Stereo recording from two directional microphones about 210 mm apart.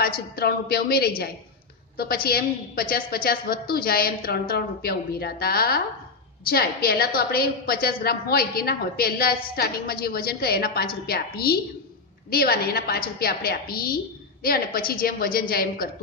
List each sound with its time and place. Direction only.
0.4 s a woman's voice: 50° left (ahead or behind)